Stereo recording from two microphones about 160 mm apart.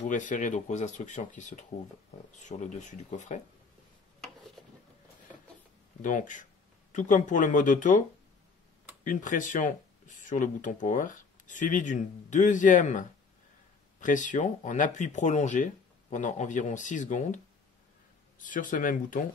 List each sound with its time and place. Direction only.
0.0 s speech: 50° left (ahead or behind)
6.0 s speech: 55° left (ahead or behind)
9.0 s speech: 55° left (ahead or behind)
18.4 s speech: 55° left (ahead or behind)